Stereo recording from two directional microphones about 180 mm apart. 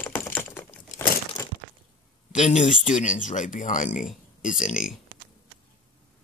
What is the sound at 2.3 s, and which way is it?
Speech, 40° left (ahead or behind).